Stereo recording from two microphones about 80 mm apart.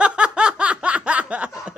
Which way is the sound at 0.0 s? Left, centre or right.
Centre.